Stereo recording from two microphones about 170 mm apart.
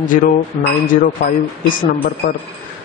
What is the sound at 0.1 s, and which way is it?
Speech, 50° left (ahead or behind).